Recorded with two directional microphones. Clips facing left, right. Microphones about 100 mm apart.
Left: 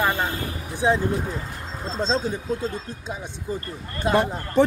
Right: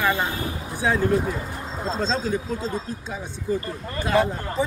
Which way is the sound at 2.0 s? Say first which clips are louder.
Left 1 dB; 20° left (ahead or behind).